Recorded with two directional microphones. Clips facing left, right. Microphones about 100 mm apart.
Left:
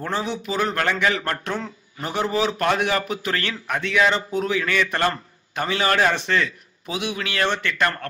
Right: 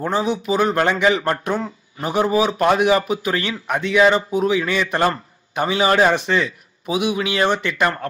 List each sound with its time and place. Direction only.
0.0 s a man's voice: 15° right (ahead or behind)